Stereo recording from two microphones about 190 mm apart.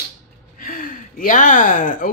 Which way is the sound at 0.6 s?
50° left (ahead or behind).